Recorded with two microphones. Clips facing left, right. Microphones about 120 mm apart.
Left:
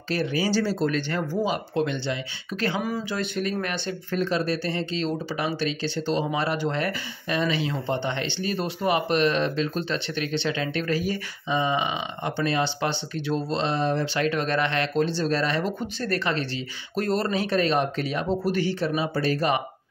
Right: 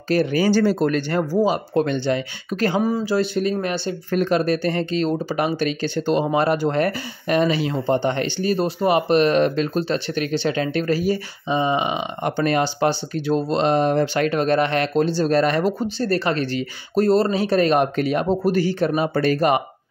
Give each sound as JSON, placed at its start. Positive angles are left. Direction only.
{"t": 0.1, "sound": "speech", "side_deg": -45}
{"t": 4.1, "sound": "speech", "side_deg": -50}
{"t": 12.2, "sound": "speech", "side_deg": -50}